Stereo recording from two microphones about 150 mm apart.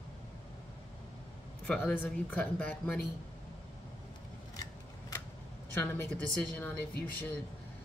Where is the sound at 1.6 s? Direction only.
10° left (ahead or behind).